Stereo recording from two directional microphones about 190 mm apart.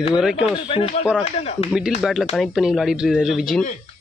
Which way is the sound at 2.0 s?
Centre (ahead or behind).